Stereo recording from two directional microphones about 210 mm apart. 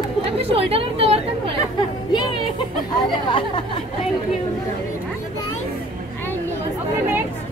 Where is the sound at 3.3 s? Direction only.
25° left (ahead or behind).